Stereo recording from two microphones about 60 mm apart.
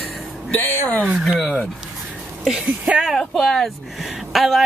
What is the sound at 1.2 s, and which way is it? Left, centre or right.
Speech, centre.